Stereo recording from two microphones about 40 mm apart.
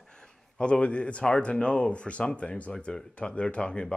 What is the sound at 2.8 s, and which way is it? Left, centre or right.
Speech, centre.